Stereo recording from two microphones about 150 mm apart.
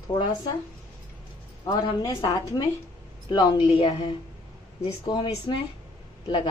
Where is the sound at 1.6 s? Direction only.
25° left (ahead or behind).